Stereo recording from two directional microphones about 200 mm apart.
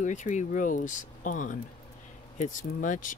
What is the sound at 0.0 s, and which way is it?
Speech, 40° left (ahead or behind).